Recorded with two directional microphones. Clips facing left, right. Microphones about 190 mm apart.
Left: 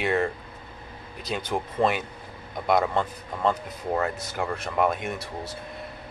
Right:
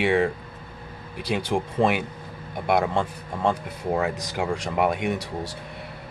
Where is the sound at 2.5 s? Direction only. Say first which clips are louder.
Right 1 dB; 10° right (ahead or behind).